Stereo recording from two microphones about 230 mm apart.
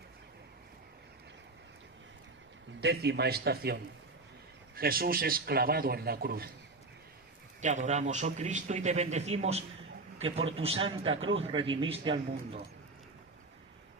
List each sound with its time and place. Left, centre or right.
2.8 s a man's voice: right
7.6 s a man's voice: right